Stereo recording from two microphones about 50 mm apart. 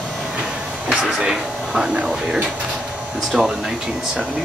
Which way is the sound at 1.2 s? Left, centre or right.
Centre.